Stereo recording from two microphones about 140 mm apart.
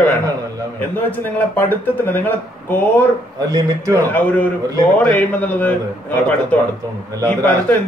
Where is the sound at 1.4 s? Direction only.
15° left (ahead or behind).